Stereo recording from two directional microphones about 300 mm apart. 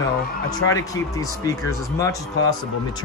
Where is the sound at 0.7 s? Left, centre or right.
Centre.